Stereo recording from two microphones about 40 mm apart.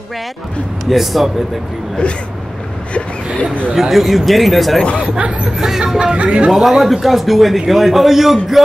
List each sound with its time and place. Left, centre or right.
0.8 s a man's voice: centre
3.7 s a man's voice: centre
5.6 s speech: centre
6.1 s speech: right
6.5 s a man's voice: centre